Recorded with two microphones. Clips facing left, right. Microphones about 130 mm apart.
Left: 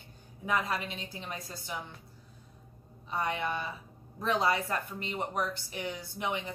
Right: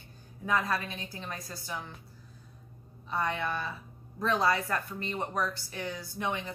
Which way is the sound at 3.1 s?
20° left (ahead or behind).